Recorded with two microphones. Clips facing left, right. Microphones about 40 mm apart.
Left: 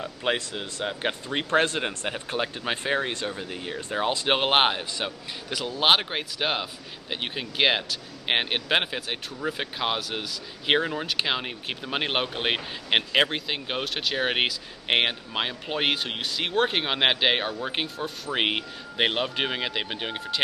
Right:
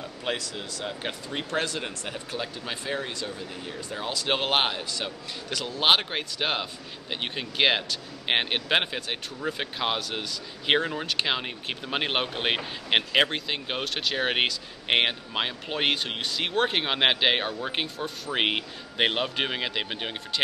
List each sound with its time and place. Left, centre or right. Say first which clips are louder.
0.0 s speech: left 4 dB; left; by 20.4 s centre